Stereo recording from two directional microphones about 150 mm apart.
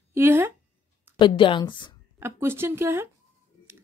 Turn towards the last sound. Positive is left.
turn(degrees=-15)  # may be behind; listen again after turning